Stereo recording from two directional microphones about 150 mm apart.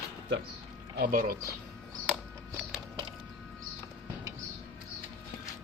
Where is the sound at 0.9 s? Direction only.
80° right.